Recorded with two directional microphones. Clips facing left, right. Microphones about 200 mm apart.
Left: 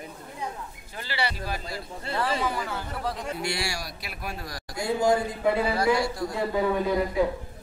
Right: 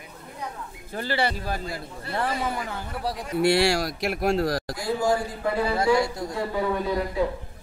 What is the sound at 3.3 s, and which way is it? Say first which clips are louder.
Speech: right 11 dB; 60° right (ahead or behind).